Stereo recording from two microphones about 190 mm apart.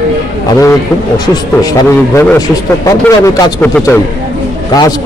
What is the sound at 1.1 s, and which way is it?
A man's voice, 20° left (ahead or behind).